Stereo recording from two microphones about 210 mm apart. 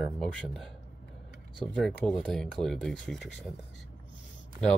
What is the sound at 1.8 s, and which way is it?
Speech, centre (ahead or behind).